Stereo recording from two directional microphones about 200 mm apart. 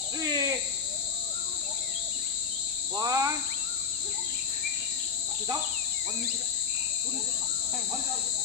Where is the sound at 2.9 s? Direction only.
15° right (ahead or behind).